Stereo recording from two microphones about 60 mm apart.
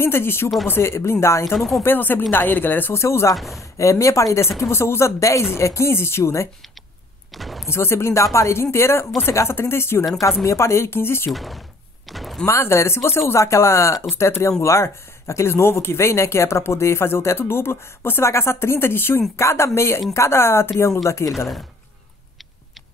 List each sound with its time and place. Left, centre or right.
0.0 s speech: left
1.8 s speech: left
2.9 s speech: left
3.3 s speech: centre
3.7 s speech: left
7.3 s a sound: centre
7.6 s speech: left
11.3 s speech: centre
12.1 s a sound: centre
12.4 s speech: left
14.0 s speech: left
20.8 s speech: left